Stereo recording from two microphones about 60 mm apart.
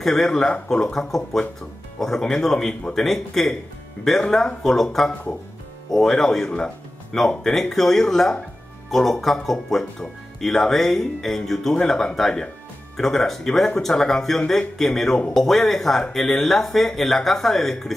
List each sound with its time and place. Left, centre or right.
0.0 s speech: centre
5.9 s speech: centre